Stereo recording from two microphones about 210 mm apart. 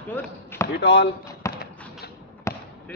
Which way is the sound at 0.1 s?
10° left (ahead or behind).